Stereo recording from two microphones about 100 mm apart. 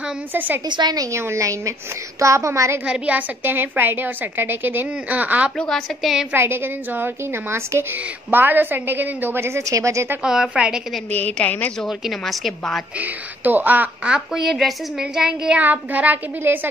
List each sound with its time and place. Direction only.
0.3 s a woman's voice: 20° right (ahead or behind)
0.7 s a woman's voice: 45° right (ahead or behind)
1.1 s a woman's voice: 30° right (ahead or behind)
2.8 s a woman's voice: 15° right (ahead or behind)
5.6 s a woman's voice: 5° left (ahead or behind)
6.3 s a woman's voice: 25° right (ahead or behind)
10.2 s a woman's voice: 5° right (ahead or behind)
11.1 s a woman's voice: 15° left (ahead or behind)
12.0 s a woman's voice: centre (ahead or behind)
13.0 s a woman's voice: 20° right (ahead or behind)